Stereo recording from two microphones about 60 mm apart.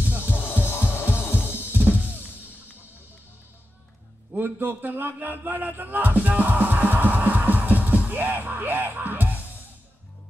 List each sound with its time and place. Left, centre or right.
0.0 s music: right
0.3 s music: left
1.7 s drum kit: right
4.3 s a man's voice: right